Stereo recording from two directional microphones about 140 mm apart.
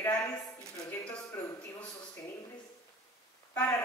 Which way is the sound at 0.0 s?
15° left (ahead or behind).